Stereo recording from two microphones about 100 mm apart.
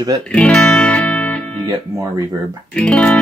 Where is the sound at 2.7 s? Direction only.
10° left (ahead or behind).